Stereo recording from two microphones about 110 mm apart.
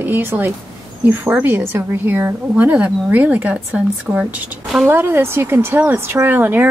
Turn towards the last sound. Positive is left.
turn(degrees=-20)  # may be behind; listen again after turning